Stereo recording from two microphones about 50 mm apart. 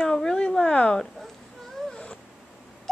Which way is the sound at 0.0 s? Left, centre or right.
Centre.